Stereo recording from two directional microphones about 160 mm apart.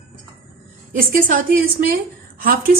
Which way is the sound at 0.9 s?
60° right (ahead or behind).